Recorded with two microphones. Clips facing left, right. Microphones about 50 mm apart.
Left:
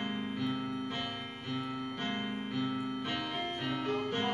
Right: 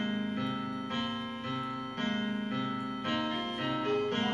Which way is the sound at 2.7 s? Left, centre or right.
Right.